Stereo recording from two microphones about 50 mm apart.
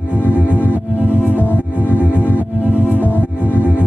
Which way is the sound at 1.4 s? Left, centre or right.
Left.